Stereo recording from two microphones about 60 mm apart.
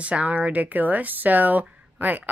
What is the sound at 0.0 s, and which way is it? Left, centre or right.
Speech, right.